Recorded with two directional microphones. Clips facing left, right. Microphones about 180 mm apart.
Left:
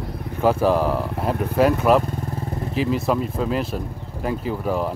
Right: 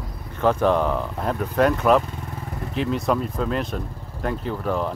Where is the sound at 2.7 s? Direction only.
5° left (ahead or behind).